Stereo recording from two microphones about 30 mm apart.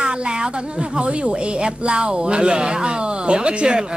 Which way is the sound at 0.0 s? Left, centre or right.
Right.